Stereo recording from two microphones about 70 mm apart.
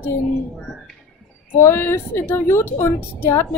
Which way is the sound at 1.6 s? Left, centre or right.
Left.